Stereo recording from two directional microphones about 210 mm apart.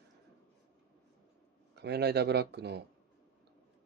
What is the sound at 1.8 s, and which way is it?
Speech, 50° right (ahead or behind).